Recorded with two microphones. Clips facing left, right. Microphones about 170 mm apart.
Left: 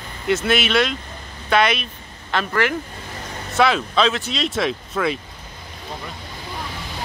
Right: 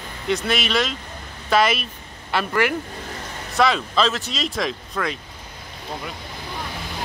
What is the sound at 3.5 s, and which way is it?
Speech, centre (ahead or behind).